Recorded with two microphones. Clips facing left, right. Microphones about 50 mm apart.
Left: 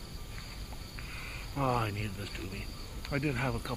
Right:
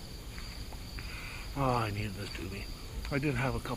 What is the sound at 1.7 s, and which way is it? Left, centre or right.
Speech, centre.